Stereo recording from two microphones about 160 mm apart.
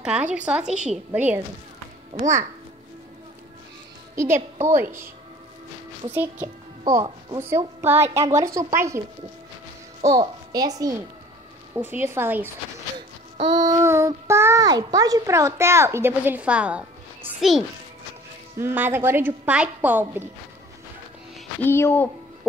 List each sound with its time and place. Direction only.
0.0 s a child's voice: 5° right (ahead or behind)
4.1 s a child's voice: 15° right (ahead or behind)
6.1 s a child's voice: 10° right (ahead or behind)
6.9 s a child's voice: 20° right (ahead or behind)
10.1 s a child's voice: 25° right (ahead or behind)
13.4 s a child's voice: 30° right (ahead or behind); by 17.6 s 5° right (ahead or behind)
18.6 s a child's voice: 15° right (ahead or behind)
21.5 s speech: 15° left (ahead or behind)